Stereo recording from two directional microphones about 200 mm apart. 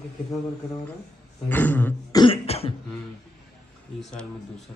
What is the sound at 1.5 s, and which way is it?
Speech, 10° left (ahead or behind).